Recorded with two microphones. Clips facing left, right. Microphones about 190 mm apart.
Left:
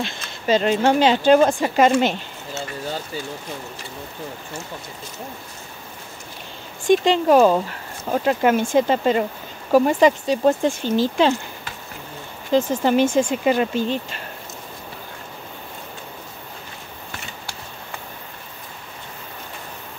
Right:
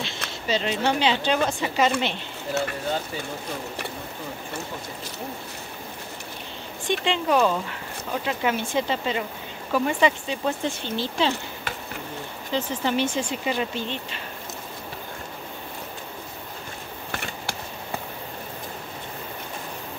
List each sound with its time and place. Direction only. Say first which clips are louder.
0.5 s a woman's voice: left 7 dB; 50° left (ahead or behind)
6.9 s a woman's voice: left 8 dB; 45° left (ahead or behind)
12.5 s a woman's voice: left 8 dB; 45° left (ahead or behind)